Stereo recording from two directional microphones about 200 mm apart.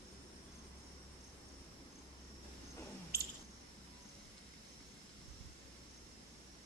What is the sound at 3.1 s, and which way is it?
Squish, 50° right (ahead or behind).